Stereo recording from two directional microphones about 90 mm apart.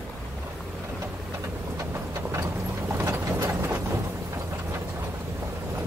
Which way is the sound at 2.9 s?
30° right (ahead or behind).